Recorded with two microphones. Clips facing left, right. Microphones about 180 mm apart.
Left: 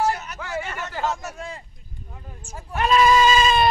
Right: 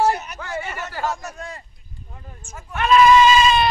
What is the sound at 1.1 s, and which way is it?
Speech, 5° left (ahead or behind).